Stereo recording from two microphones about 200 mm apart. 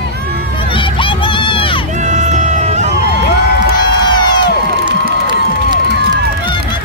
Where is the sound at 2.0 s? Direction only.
35° right (ahead or behind).